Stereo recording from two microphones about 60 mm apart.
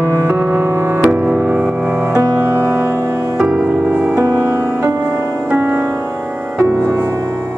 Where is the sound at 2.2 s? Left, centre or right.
Right.